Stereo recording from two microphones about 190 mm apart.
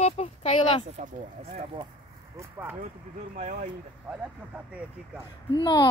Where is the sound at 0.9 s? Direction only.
35° right (ahead or behind).